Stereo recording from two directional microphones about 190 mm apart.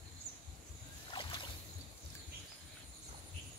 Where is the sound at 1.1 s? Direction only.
25° left (ahead or behind).